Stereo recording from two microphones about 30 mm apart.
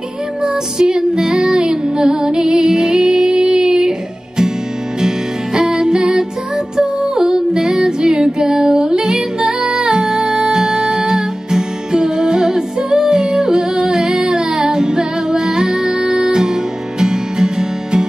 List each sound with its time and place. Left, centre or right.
0.4 s music: right
5.0 s music: right
7.2 s music: centre
13.1 s yodeling: right
14.2 s music: right